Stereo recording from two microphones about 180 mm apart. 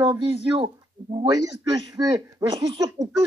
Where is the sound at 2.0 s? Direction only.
20° right (ahead or behind).